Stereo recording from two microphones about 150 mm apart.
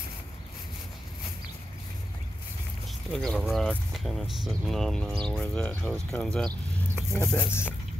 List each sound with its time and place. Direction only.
3.1 s speech: 5° left (ahead or behind)
7.2 s speech: 15° left (ahead or behind)